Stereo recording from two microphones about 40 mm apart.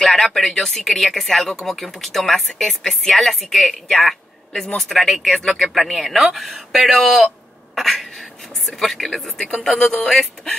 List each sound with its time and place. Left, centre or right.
0.1 s speech: centre
7.7 s a sound: centre
8.6 s speech: centre